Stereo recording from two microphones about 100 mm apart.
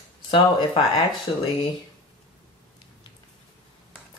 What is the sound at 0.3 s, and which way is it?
Speech, 50° left (ahead or behind).